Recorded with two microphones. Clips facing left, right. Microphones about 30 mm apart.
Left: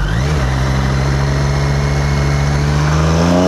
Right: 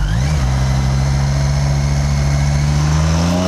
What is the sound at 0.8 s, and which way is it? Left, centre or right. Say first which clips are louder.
Vehicle: left 2 dB; left.